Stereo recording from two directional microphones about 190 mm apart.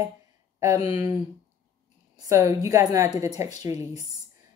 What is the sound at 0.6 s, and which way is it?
Speech, 15° right (ahead or behind).